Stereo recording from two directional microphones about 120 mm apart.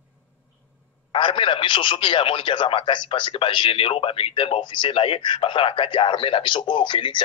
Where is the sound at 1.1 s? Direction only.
45° left (ahead or behind).